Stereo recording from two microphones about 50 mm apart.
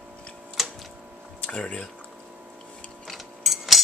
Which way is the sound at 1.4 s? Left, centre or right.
Centre.